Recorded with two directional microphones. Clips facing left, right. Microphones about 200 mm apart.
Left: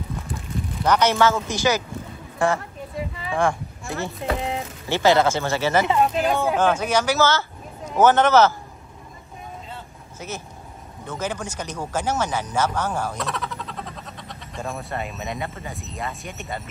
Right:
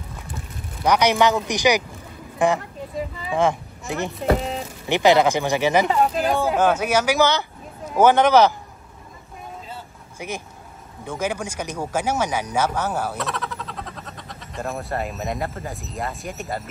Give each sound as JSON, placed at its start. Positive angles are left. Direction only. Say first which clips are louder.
{"t": 0.8, "sound": "a woman's voice", "louder": "right 1 dB", "side_deg": -15}
{"t": 5.9, "sound": "speech", "louder": "even", "side_deg": -5}
{"t": 9.7, "sound": "vehicle", "louder": "right 1 dB", "side_deg": -10}
{"t": 11.1, "sound": "speech", "louder": "right 3 dB", "side_deg": -10}